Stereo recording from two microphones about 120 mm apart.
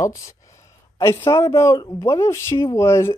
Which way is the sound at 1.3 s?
25° left (ahead or behind).